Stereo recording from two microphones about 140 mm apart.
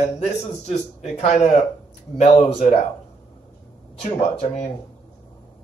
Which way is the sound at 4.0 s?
50° left (ahead or behind).